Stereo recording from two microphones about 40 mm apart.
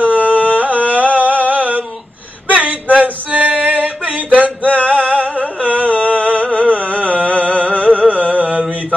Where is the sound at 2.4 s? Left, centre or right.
Right.